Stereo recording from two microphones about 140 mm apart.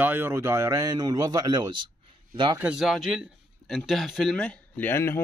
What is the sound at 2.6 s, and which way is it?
A man's voice, 5° right (ahead or behind).